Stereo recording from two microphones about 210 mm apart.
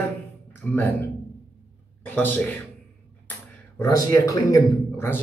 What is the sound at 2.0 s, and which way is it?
Speech, 10° left (ahead or behind).